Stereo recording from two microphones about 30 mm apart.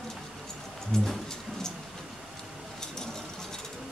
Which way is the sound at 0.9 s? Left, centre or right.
Centre.